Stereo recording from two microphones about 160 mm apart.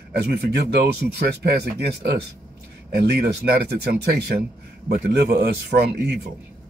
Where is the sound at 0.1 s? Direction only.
85° right.